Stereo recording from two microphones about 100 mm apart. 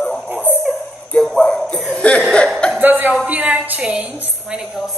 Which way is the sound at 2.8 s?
20° right (ahead or behind).